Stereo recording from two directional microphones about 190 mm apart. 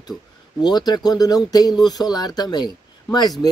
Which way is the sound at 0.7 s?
20° left (ahead or behind).